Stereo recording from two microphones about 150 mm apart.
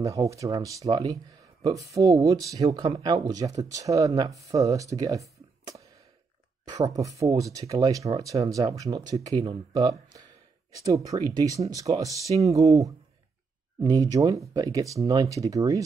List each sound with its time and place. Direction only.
0.0 s speech: 20° right (ahead or behind)